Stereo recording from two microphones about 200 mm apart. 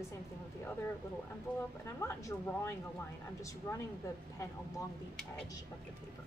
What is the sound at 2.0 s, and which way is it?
A woman's voice, 15° left (ahead or behind).